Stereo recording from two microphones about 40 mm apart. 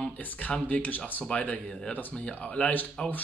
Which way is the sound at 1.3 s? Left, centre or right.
Left.